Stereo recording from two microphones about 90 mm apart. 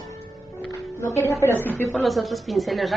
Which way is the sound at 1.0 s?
30° left (ahead or behind).